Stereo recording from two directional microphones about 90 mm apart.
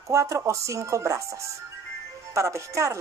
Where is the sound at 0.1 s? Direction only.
35° right (ahead or behind).